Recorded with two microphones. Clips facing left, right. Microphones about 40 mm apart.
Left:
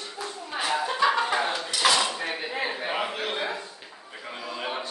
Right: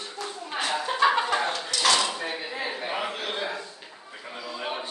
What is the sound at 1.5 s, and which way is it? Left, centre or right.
Dishes, centre.